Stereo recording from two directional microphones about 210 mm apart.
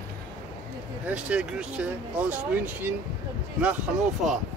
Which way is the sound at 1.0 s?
5° right (ahead or behind).